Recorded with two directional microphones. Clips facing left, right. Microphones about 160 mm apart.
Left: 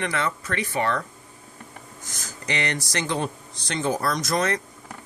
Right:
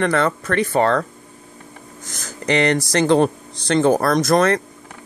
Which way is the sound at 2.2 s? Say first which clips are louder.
Right 11 dB; 80° right.